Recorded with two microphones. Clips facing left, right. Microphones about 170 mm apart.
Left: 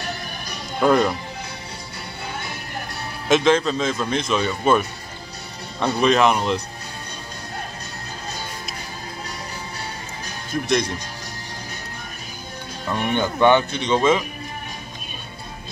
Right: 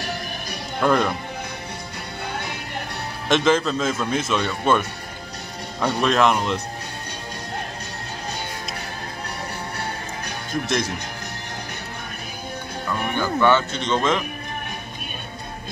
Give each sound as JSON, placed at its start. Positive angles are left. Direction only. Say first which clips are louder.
{"t": 0.7, "sound": "speech", "louder": "left 2 dB", "side_deg": 5}
{"t": 3.3, "sound": "a man's voice", "louder": "left 2 dB", "side_deg": 0}
{"t": 12.9, "sound": "speech", "louder": "left 2 dB", "side_deg": 20}